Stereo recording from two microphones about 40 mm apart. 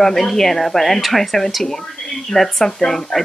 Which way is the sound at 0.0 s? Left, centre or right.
Centre.